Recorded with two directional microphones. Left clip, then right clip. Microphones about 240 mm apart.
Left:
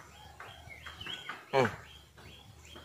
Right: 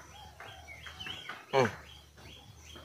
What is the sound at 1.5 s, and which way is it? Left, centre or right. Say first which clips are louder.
Speech: even; centre.